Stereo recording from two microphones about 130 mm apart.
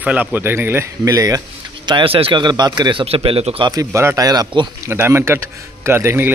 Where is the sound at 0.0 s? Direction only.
10° right (ahead or behind).